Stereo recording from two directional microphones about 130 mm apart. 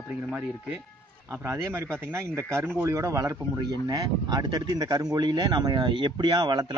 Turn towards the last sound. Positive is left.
turn(degrees=-35)  # may be behind; listen again after turning